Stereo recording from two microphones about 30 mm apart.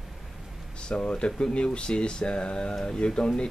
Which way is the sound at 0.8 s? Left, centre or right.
Left.